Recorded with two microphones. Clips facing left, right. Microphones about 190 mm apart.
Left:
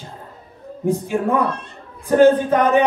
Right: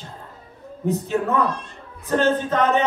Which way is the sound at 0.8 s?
10° left (ahead or behind).